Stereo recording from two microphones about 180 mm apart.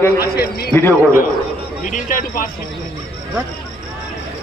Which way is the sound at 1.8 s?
45° left (ahead or behind).